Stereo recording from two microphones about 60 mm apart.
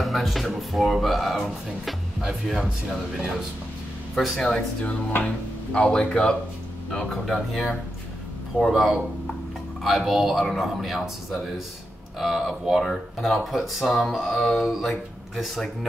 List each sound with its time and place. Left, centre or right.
0.0 s speech: centre
4.4 s speech: centre
6.9 s speech: centre
12.2 s speech: centre